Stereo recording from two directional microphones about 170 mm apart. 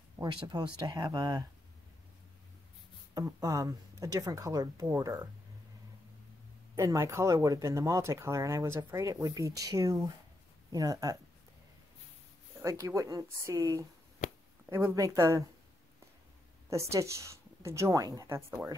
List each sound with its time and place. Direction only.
0.2 s speech: 25° right (ahead or behind)
3.2 s speech: 20° right (ahead or behind)
6.7 s speech: 15° right (ahead or behind)
12.6 s speech: 20° right (ahead or behind)
14.2 s a sound: 45° left (ahead or behind)
14.7 s speech: 15° right (ahead or behind)
16.7 s speech: 15° right (ahead or behind)